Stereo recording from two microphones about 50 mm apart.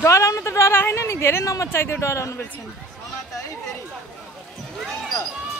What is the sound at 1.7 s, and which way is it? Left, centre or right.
Speech, left.